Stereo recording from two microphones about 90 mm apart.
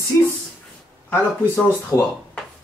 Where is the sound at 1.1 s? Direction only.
25° left (ahead or behind).